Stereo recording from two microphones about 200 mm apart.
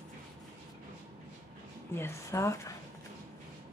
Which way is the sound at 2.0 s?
15° left (ahead or behind).